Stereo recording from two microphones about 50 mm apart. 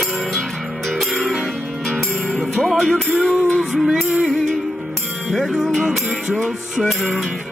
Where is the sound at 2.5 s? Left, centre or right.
Centre.